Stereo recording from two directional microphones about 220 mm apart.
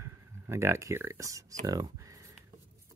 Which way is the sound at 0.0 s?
10° right (ahead or behind).